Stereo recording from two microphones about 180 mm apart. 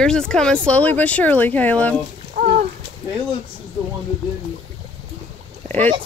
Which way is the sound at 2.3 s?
50° right (ahead or behind).